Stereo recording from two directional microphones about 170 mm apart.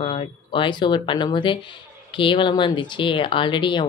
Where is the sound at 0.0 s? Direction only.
30° left (ahead or behind).